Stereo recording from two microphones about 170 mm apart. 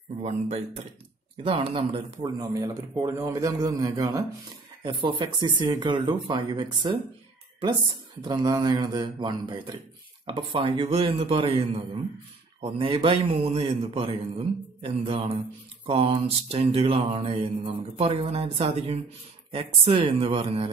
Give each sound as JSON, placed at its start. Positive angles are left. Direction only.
{"t": 1.4, "sound": "a man's voice", "side_deg": -35}
{"t": 2.1, "sound": "speech", "side_deg": -20}
{"t": 8.2, "sound": "a man's voice", "side_deg": -25}